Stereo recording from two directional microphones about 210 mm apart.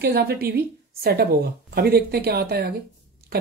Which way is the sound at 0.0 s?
50° right (ahead or behind).